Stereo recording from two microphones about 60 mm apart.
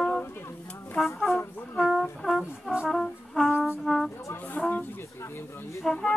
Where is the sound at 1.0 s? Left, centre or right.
Centre.